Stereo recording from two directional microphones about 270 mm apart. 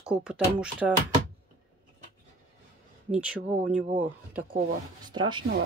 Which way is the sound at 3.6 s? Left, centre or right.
Right.